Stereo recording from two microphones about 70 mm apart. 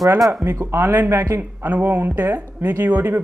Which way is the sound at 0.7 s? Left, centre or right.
Right.